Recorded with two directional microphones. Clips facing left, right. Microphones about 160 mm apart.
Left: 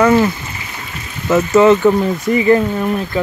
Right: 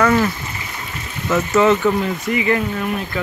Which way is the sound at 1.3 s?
30° left (ahead or behind).